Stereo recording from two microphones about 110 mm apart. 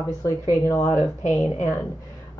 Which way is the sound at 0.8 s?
90° left.